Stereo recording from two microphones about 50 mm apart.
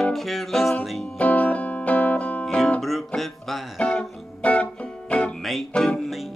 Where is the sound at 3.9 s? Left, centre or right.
Left.